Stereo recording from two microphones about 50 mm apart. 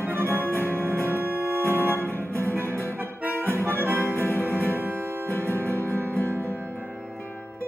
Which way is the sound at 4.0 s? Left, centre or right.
Left.